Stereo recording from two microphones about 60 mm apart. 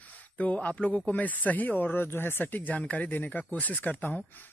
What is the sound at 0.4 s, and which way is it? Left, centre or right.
Speech, left.